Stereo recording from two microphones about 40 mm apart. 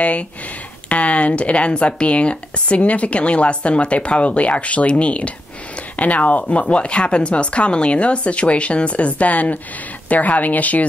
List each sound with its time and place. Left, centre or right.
0.0 s speech: left
6.5 s speech: left